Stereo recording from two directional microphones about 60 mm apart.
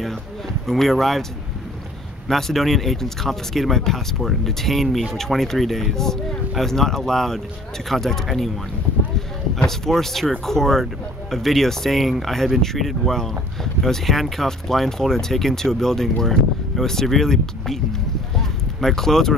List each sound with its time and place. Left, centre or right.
0.7 s speech: centre
2.2 s speech: centre
9.7 s speech: centre
18.3 s a sound: centre